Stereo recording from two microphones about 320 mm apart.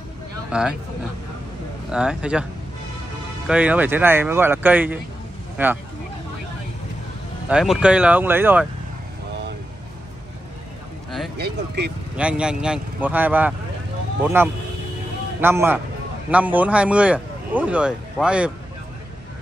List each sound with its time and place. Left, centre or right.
0.5 s speech: centre
1.9 s speech: centre
3.4 s a man's voice: centre
7.4 s speech: centre
11.3 s speech: right
12.2 s a man's voice: centre